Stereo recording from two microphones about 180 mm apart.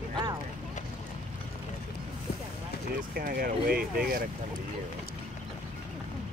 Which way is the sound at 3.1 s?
55° right (ahead or behind).